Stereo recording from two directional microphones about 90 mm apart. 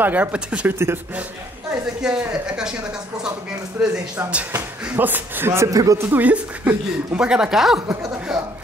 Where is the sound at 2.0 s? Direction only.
10° right (ahead or behind); by 6.2 s 30° right (ahead or behind).